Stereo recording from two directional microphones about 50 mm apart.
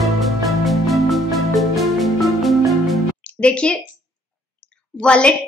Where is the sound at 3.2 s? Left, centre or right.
Left.